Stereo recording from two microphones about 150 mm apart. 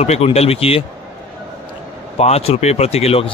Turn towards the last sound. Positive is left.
turn(degrees=40)  # may be behind; listen again after turning